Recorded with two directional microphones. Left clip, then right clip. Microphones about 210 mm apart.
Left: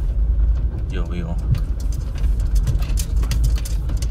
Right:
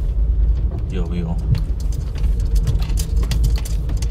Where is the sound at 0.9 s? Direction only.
15° right (ahead or behind).